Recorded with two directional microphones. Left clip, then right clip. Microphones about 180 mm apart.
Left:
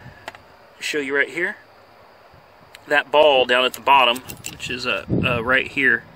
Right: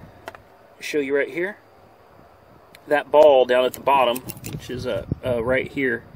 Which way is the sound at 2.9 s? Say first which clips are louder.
Right 1 dB; 20° right (ahead or behind).